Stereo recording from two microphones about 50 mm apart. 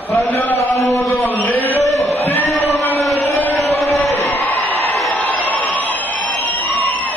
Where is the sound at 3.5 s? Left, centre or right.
Left.